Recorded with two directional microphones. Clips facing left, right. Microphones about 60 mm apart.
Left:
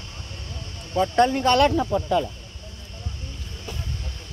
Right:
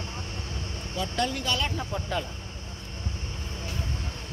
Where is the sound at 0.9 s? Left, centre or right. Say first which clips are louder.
Left 10 dB; left.